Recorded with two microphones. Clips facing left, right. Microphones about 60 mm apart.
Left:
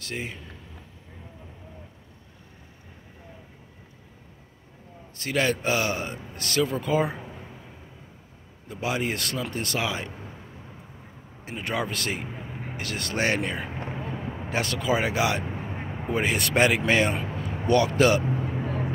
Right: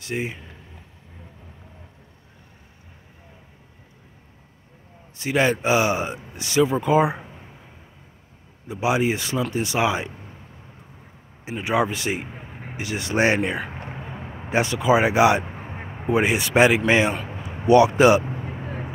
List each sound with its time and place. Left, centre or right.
0.0 s speech: centre
5.1 s speech: centre
8.6 s speech: centre
9.8 s speech: right
11.4 s speech: centre
14.0 s a sound: centre
14.5 s speech: centre